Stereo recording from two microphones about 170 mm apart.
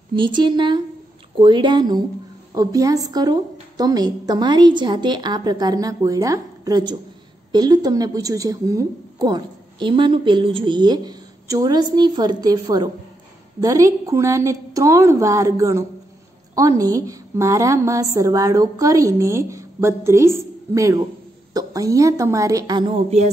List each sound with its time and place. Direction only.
0.1 s a woman's voice: 30° right (ahead or behind)